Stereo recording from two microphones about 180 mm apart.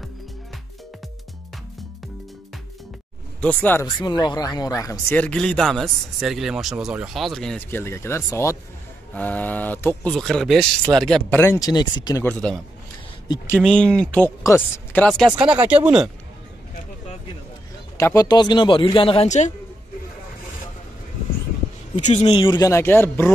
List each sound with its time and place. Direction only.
3.3 s speech: 10° left (ahead or behind)
3.8 s speech: 25° left (ahead or behind)
12.3 s speech: 5° left (ahead or behind)
15.3 s speech: 5° right (ahead or behind)
17.9 s speech: 20° left (ahead or behind); by 19.5 s 40° left (ahead or behind)
21.9 s speech: 40° left (ahead or behind); by 23.3 s 10° left (ahead or behind)